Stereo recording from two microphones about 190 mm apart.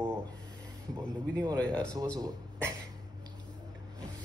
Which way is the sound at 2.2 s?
15° right (ahead or behind).